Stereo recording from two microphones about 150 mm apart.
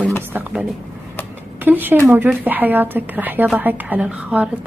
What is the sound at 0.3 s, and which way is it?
A woman's voice, 10° right (ahead or behind).